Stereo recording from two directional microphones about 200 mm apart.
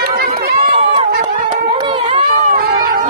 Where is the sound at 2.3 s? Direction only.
50° right (ahead or behind).